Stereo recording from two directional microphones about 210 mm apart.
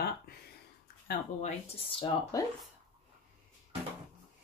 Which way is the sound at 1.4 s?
25° left (ahead or behind).